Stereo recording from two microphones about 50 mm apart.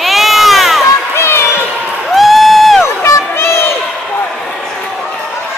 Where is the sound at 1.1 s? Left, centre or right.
Left.